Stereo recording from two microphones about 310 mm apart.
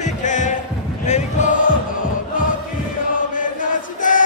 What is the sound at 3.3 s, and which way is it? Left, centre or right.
Chant, left.